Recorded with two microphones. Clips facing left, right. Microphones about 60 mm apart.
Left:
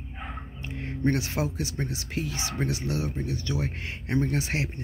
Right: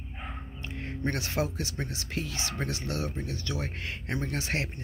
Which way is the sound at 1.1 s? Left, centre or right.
Left.